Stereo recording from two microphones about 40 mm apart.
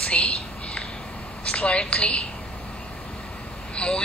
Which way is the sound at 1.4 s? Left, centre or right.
Left.